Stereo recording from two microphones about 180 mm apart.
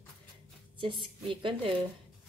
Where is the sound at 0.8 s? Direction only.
30° right (ahead or behind).